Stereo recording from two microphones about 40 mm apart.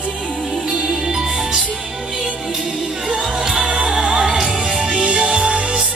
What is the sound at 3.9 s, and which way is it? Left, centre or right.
Music, centre.